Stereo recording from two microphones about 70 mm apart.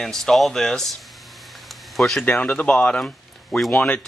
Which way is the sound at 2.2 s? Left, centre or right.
Left.